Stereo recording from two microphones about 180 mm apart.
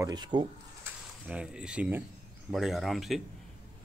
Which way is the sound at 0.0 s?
25° right (ahead or behind).